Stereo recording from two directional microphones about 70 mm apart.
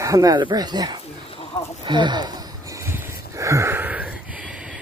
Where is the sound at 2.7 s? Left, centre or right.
Right.